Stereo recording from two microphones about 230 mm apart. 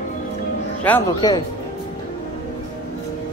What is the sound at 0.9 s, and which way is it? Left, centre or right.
Speech, centre.